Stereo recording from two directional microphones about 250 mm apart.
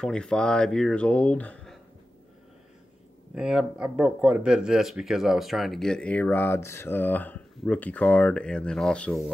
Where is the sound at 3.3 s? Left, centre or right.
Centre.